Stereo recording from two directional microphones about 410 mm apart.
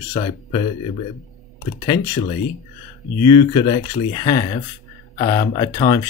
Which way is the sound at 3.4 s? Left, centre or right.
Centre.